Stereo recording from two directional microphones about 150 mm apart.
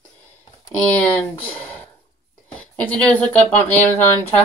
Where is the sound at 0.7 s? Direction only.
5° left (ahead or behind).